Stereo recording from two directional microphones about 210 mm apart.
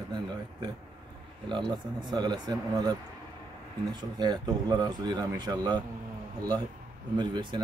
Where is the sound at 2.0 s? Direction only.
20° right (ahead or behind).